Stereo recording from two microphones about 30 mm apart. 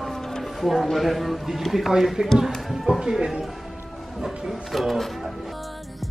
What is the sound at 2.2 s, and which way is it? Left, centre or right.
Speech, right.